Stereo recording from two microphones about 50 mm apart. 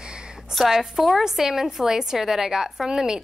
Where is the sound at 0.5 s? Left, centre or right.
Centre.